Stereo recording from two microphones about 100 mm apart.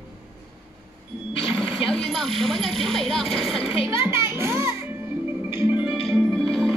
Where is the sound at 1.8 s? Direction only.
5° left (ahead or behind).